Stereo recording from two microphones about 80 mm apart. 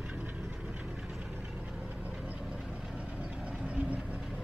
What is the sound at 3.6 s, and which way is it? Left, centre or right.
Vehicle, centre.